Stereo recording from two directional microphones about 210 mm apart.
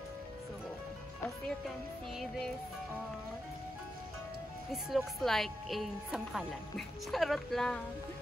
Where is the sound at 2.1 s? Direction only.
Centre (ahead or behind).